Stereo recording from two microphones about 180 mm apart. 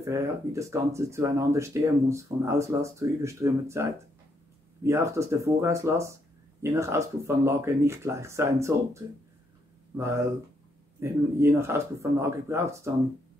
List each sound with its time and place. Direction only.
0.0 s speech: 15° right (ahead or behind)
4.8 s speech: 15° right (ahead or behind)